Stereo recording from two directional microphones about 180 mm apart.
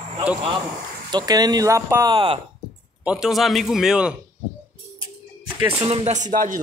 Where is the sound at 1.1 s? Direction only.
20° right (ahead or behind).